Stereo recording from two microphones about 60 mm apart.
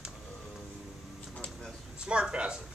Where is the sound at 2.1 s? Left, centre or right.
Centre.